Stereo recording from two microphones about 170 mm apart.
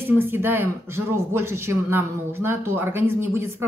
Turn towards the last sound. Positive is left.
turn(degrees=-15)  # may be behind; listen again after turning